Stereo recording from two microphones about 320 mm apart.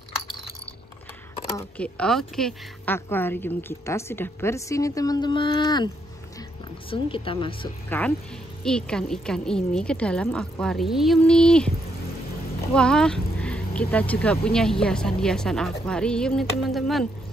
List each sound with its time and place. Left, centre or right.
1.3 s speech: centre
6.9 s speech: centre
12.7 s speech: centre